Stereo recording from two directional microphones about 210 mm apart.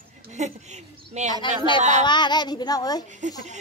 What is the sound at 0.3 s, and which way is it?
Speech, 35° right (ahead or behind).